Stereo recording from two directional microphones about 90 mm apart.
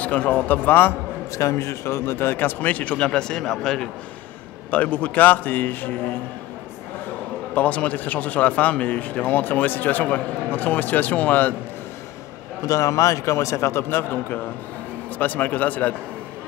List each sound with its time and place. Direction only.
0.0 s speech: 15° left (ahead or behind)
1.3 s a man's voice: 35° left (ahead or behind)
7.5 s speech: 15° left (ahead or behind)
12.6 s a man's voice: 40° left (ahead or behind); by 15.9 s 20° left (ahead or behind)